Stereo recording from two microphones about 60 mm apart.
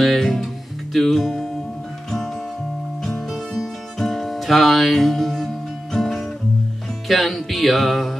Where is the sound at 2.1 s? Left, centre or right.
Centre.